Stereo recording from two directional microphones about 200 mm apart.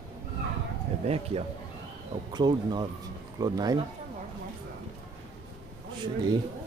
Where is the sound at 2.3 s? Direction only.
20° right (ahead or behind).